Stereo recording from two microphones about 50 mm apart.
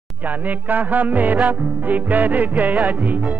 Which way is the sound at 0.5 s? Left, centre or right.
Right.